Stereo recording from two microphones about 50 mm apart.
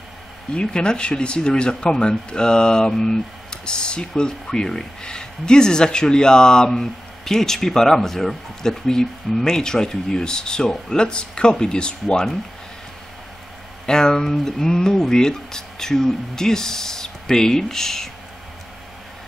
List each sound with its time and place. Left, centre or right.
0.6 s speech: centre
13.8 s speech: centre